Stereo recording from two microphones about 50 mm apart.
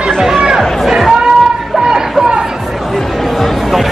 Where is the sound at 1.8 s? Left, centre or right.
Centre.